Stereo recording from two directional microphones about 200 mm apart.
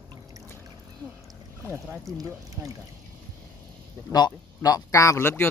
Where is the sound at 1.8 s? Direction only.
Centre (ahead or behind).